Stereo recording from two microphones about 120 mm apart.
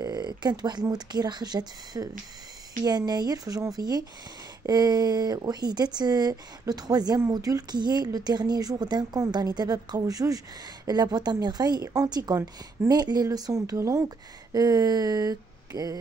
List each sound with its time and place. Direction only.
0.0 s speech: 35° right (ahead or behind)